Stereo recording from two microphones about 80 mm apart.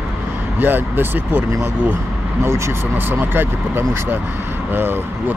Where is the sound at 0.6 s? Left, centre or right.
Right.